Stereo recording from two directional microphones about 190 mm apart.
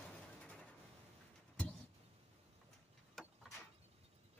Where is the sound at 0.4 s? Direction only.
5° left (ahead or behind).